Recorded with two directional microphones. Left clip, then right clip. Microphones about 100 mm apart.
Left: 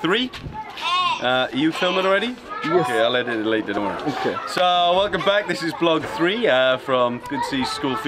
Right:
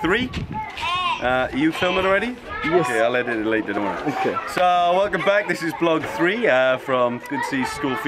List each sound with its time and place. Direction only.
0.0 s speech: centre (ahead or behind)
1.2 s speech: 10° left (ahead or behind)
1.7 s speech: 25° left (ahead or behind)
2.9 s speech: centre (ahead or behind)